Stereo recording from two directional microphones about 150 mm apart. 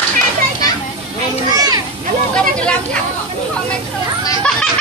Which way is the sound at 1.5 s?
25° right (ahead or behind).